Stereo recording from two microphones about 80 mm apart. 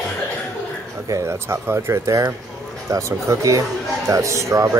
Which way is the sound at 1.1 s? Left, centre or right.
Right.